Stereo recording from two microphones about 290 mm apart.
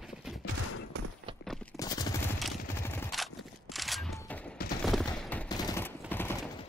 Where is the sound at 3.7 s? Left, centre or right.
Centre.